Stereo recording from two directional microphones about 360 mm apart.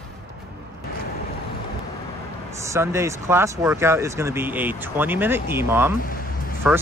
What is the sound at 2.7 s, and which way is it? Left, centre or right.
Speech, centre.